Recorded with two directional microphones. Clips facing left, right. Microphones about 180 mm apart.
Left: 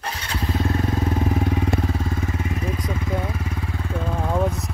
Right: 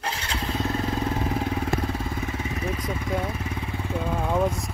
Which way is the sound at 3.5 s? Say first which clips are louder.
Left 2 dB; 15° right (ahead or behind).